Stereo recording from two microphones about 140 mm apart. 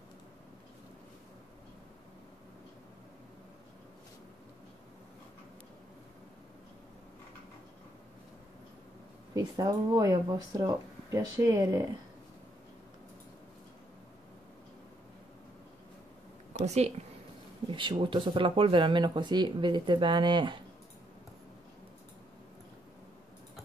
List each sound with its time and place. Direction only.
9.3 s speech: 25° right (ahead or behind)
16.6 s speech: 50° right (ahead or behind)
17.6 s speech: 35° right (ahead or behind)